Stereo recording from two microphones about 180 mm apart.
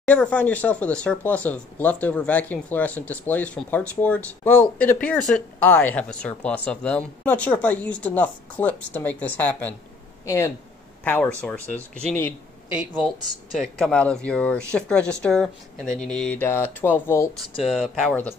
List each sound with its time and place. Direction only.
0.0 s speech: 5° left (ahead or behind)
12.7 s speech: 5° right (ahead or behind); by 17.3 s 15° left (ahead or behind)
17.6 s speech: centre (ahead or behind)